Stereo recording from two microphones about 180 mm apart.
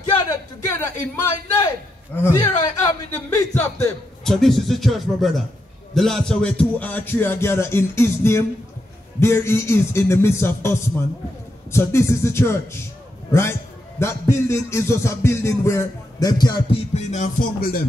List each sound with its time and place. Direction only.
0.3 s a sound: 15° left (ahead or behind)
2.3 s a man's voice: 25° left (ahead or behind)
4.2 s a man's voice: centre (ahead or behind); by 16.6 s 20° left (ahead or behind)
16.9 s music: 40° left (ahead or behind)
17.6 s music: 55° left (ahead or behind)